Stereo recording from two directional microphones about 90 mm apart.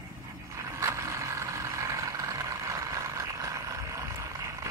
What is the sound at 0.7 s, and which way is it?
Vehicle, 35° right (ahead or behind).